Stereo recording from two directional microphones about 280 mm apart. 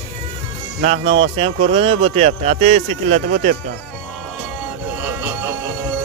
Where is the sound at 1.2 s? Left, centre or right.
Right.